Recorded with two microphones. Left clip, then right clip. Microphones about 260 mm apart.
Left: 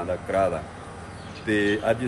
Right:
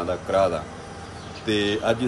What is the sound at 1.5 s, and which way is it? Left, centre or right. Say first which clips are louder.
Speech: even; centre.